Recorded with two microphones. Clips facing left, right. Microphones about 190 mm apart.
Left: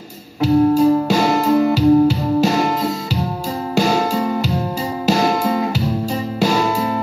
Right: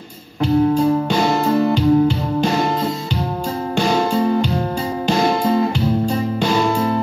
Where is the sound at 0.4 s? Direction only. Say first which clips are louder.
Left 2 dB; 5° left (ahead or behind).